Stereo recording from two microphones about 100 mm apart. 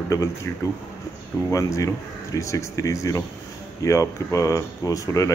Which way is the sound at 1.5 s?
30° left (ahead or behind).